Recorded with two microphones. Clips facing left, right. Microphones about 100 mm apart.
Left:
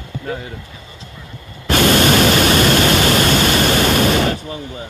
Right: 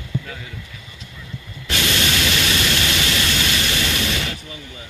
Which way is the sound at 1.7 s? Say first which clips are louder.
Left 10 dB; 45° left (ahead or behind).